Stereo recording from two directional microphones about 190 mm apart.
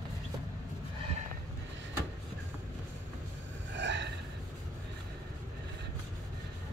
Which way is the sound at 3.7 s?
70° right (ahead or behind).